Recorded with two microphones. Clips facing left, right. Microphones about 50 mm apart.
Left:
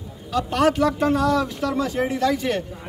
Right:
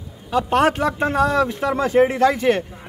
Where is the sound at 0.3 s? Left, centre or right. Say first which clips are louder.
Right 3 dB; right.